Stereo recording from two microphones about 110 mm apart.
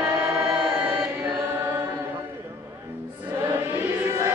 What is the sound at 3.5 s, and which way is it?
Chant, 20° right (ahead or behind).